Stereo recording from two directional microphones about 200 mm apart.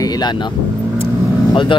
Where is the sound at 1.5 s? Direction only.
25° left (ahead or behind).